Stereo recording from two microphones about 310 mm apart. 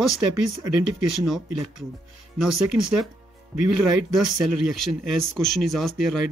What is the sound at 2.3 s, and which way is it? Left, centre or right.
Speech, right.